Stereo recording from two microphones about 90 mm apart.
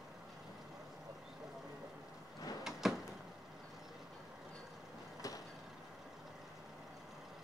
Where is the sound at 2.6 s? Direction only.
Centre (ahead or behind).